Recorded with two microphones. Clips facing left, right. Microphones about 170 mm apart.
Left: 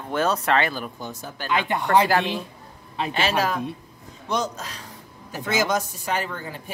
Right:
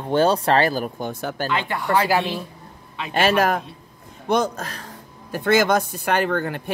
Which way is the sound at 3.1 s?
50° right (ahead or behind).